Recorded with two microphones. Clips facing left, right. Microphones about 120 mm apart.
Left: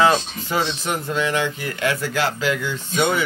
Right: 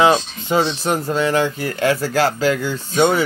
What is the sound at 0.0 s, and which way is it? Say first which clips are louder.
Speech: right 3 dB; 20° right (ahead or behind).